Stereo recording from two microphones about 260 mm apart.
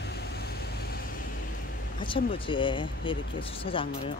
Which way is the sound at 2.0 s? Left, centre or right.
Centre.